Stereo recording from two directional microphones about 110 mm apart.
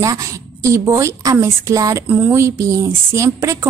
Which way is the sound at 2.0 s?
15° right (ahead or behind).